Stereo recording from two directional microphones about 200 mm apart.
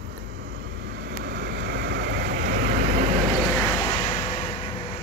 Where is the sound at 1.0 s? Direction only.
55° right (ahead or behind).